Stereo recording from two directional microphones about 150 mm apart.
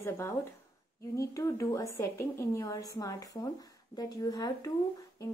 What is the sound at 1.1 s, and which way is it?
A woman's voice, 20° left (ahead or behind).